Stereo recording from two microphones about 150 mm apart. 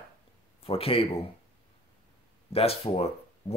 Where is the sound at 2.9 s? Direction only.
45° left (ahead or behind).